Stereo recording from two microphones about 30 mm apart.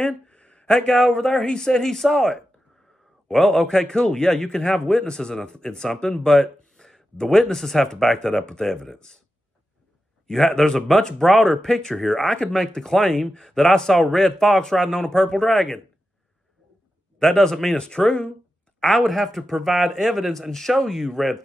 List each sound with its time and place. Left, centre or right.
0.0 s a sound: left
0.7 s a man's voice: centre
1.3 s a man's voice: left
1.6 s speech: centre
3.4 s a man's voice: left
10.2 s a man's voice: left
12.2 s a man's voice: left
12.5 s a man's voice: centre
17.2 s speech: centre
17.7 s a man's voice: left
18.0 s speech: left
19.0 s speech: centre